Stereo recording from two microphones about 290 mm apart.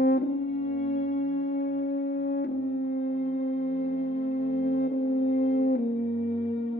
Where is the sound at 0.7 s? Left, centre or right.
Left.